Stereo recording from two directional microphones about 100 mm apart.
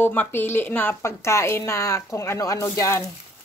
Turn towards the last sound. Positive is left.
turn(degrees=30)  # may be behind; listen again after turning